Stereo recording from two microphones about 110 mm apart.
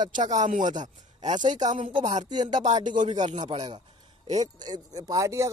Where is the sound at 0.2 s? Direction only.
90° right.